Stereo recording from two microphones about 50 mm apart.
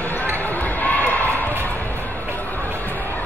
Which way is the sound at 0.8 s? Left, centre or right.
Left.